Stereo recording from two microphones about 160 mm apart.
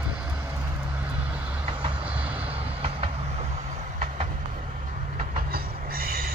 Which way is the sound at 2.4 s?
35° right (ahead or behind).